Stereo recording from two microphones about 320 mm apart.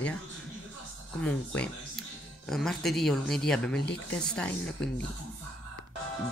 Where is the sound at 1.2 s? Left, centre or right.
Centre.